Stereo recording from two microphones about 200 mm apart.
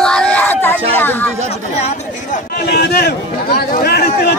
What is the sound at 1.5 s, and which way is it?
Chatter, 35° left (ahead or behind).